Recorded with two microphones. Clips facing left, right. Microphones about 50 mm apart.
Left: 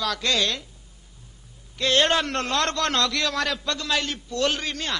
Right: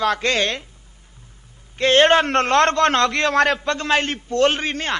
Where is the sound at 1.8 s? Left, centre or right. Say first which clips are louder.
Right 7 dB; right.